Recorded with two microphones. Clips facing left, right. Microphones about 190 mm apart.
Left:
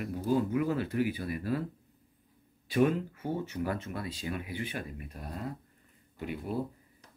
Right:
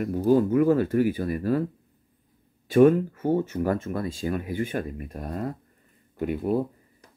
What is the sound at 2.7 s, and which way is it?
Speech, 45° right (ahead or behind).